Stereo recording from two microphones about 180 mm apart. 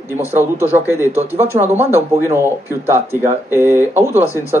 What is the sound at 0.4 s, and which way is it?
Speech, 15° right (ahead or behind).